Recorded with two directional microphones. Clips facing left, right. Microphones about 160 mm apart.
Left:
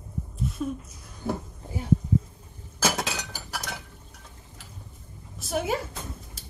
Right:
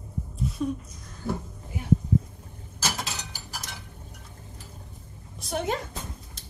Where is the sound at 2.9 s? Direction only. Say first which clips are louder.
Left 4 dB; 80° left.